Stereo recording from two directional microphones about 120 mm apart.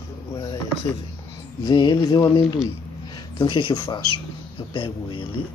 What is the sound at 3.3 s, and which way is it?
Speech, 40° left (ahead or behind).